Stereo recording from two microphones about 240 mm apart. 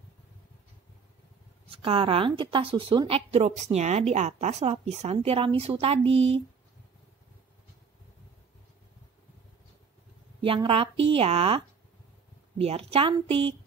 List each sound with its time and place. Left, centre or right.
1.7 s a woman's voice: right
10.4 s a woman's voice: right